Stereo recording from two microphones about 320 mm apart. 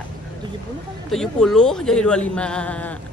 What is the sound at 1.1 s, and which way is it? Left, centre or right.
A woman's voice, centre.